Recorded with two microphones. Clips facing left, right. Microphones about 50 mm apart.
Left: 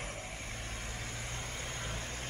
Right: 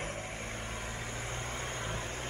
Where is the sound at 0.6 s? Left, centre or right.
Centre.